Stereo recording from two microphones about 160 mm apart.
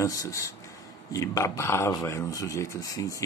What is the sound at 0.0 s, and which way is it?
Speech, 20° left (ahead or behind).